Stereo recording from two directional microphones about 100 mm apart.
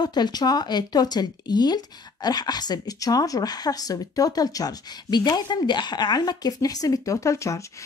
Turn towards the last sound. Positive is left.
turn(degrees=30)  # may be behind; listen again after turning